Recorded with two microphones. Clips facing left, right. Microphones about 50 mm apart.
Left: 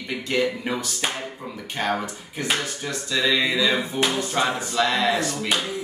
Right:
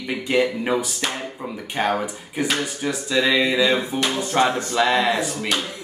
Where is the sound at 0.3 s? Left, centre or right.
Centre.